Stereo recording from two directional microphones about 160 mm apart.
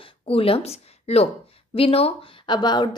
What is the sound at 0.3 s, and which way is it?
A woman's voice, 35° left (ahead or behind).